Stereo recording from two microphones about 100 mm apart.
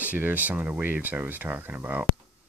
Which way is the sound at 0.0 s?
15° right (ahead or behind).